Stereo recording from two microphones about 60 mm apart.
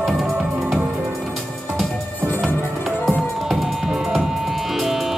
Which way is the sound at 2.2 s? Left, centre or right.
Right.